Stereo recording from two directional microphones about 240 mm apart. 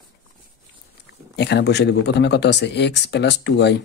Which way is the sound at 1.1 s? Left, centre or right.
Left.